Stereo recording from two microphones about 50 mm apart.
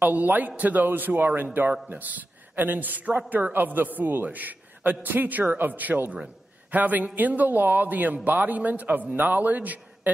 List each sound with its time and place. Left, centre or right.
0.0 s a woman's voice: right